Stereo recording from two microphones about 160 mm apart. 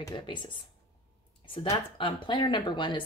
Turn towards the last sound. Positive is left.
turn(degrees=30)  # may be behind; listen again after turning